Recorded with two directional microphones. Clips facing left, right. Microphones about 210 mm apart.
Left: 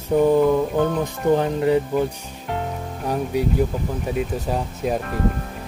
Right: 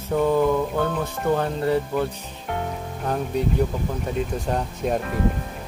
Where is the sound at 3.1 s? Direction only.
10° left (ahead or behind).